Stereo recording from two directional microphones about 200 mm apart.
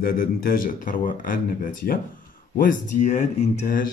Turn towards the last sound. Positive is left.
turn(degrees=35)  # may be behind; listen again after turning